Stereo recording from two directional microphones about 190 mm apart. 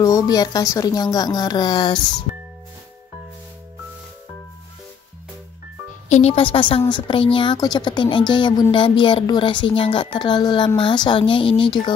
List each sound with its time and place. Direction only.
0.0 s speech: 20° left (ahead or behind)
6.0 s speech: 35° left (ahead or behind)